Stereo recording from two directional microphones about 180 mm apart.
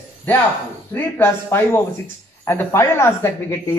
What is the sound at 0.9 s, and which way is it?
Speech, 10° left (ahead or behind).